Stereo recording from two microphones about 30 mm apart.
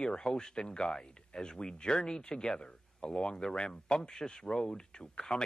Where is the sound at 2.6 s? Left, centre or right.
Left.